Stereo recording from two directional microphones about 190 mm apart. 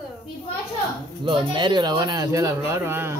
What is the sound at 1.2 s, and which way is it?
Speech, 25° right (ahead or behind).